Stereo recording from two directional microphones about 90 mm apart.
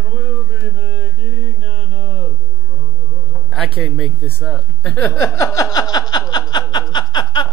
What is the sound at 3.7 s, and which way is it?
Speech, centre (ahead or behind).